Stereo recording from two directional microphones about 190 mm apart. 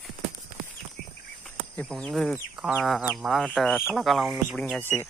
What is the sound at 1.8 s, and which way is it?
Speech, centre (ahead or behind).